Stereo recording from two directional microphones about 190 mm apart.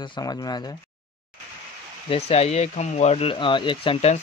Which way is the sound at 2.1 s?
35° left (ahead or behind).